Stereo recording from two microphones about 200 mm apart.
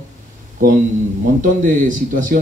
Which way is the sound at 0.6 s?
45° right (ahead or behind).